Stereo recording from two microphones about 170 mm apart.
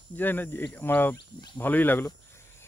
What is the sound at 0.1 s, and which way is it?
Speech, 10° left (ahead or behind).